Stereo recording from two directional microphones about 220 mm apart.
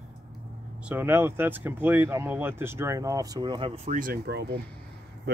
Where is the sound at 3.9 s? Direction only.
40° right (ahead or behind).